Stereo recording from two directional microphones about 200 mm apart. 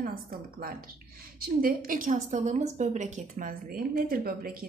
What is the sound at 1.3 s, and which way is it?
A woman's voice, 50° right (ahead or behind).